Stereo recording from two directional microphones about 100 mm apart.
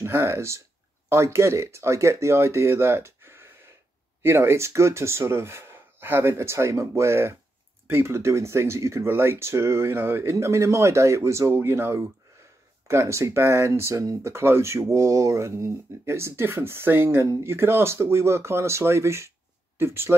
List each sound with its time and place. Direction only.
0.0 s speech: 25° right (ahead or behind)